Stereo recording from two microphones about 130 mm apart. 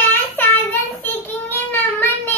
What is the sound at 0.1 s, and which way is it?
Child singing, 15° left (ahead or behind).